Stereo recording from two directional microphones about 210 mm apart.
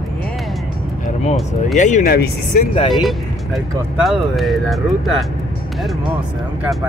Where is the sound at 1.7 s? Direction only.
35° left (ahead or behind).